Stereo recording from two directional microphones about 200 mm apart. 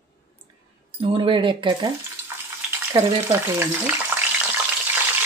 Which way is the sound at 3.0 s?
20° right (ahead or behind).